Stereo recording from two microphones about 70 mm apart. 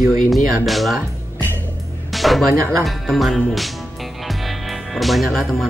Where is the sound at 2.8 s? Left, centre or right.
Centre.